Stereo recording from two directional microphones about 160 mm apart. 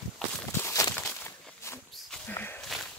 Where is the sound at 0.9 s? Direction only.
10° left (ahead or behind).